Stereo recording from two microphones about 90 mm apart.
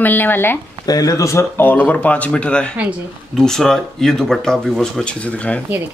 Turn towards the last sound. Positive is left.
turn(degrees=10)  # may be behind; listen again after turning